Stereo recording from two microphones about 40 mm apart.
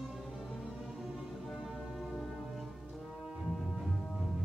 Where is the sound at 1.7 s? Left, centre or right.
Centre.